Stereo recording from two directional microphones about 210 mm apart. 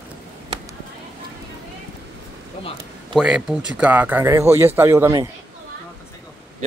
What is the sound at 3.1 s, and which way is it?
Speech, 5° right (ahead or behind).